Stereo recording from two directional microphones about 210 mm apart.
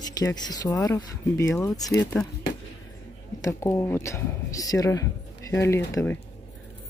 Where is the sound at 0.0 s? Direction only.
20° left (ahead or behind).